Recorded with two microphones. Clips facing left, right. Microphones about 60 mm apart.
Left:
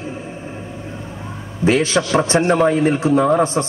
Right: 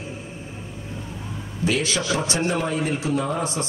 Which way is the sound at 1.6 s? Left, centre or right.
Left.